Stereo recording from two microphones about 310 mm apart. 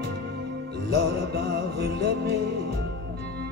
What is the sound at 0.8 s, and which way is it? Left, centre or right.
Music, right.